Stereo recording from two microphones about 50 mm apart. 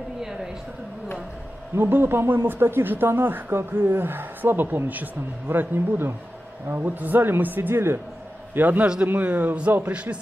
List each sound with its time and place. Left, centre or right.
0.2 s a sound: centre
1.8 s speech: right
6.7 s speech: right
8.5 s a man's voice: right